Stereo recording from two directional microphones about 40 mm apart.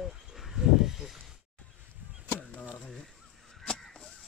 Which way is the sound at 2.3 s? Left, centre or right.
Left.